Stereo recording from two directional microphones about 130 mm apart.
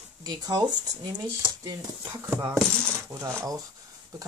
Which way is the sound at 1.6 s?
20° right (ahead or behind).